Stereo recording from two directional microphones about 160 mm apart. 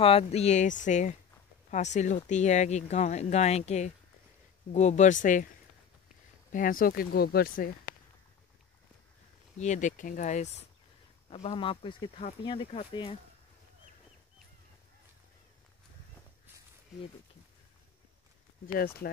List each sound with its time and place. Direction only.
0.0 s speech: 40° left (ahead or behind); by 5.5 s 55° left (ahead or behind)
6.5 s speech: 60° left (ahead or behind)
9.6 s speech: 50° left (ahead or behind); by 13.2 s 30° left (ahead or behind)